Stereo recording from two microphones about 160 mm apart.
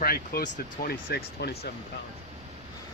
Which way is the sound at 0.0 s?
75° left (ahead or behind).